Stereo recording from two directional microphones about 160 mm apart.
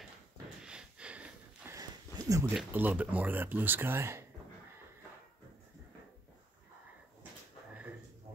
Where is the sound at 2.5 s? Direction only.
10° right (ahead or behind).